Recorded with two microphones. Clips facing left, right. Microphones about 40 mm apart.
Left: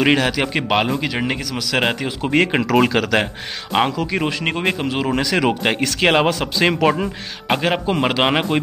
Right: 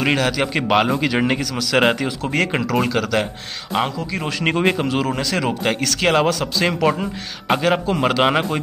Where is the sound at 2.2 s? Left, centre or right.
Left.